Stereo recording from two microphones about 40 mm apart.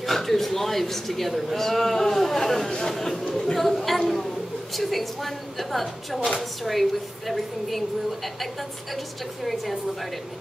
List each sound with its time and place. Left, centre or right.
0.0 s a man's voice: centre
2.9 s chatter: centre
3.3 s chatter: left
3.5 s chatter: centre
4.7 s a woman's voice: centre
8.9 s a woman's voice: centre